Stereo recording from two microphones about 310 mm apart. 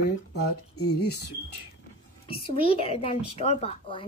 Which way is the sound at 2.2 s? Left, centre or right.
Centre.